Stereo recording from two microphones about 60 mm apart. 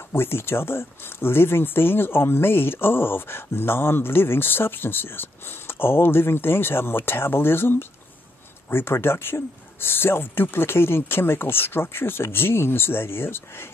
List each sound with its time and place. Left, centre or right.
0.1 s speech: left